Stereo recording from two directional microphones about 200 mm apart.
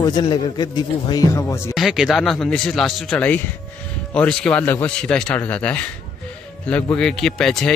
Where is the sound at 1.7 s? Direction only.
Centre (ahead or behind).